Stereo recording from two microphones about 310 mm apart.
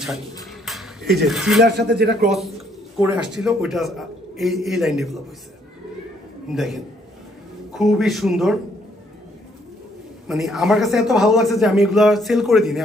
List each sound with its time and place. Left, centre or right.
0.7 s a sound: centre
1.2 s a man's voice: centre
1.6 s speech: right
2.2 s a man's voice: centre
6.5 s a man's voice: centre
10.2 s a man's voice: centre